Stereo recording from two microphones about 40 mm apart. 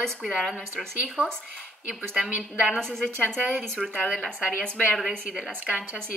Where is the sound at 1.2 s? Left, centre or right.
Right.